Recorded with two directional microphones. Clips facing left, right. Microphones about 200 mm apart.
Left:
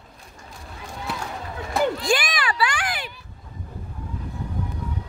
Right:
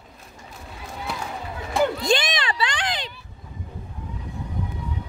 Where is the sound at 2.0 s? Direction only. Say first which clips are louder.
Right 1 dB; 20° right (ahead or behind).